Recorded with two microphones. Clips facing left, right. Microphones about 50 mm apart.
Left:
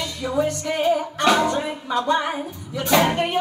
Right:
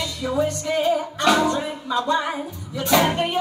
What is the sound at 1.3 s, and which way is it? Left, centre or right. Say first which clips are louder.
Music: even; left.